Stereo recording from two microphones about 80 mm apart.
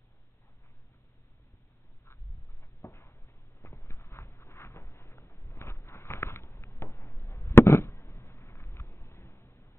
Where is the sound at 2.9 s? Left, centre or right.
Left.